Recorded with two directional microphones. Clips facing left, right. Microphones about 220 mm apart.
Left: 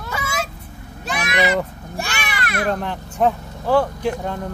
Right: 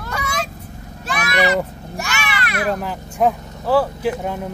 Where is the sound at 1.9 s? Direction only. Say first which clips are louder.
Right 1 dB; 30° left (ahead or behind).